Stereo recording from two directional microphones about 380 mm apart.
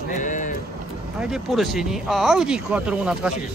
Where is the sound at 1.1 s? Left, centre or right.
Centre.